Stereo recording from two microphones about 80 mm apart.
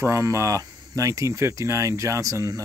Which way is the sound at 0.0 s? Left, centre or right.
Right.